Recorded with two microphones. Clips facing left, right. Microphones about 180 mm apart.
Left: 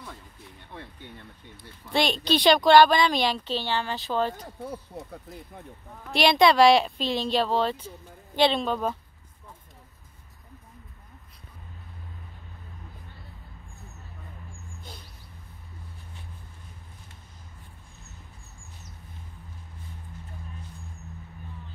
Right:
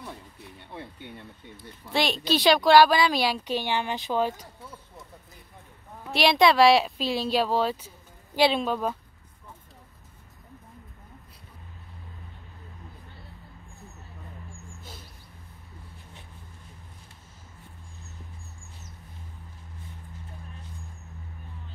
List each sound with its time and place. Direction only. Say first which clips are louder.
1.9 s a woman's voice: left 1 dB; centre (ahead or behind)
4.6 s speech: left 9 dB; 60° left (ahead or behind)
6.0 s a woman's voice: left 1 dB; centre (ahead or behind)
14.8 s a sound: left 2 dB; 5° right (ahead or behind)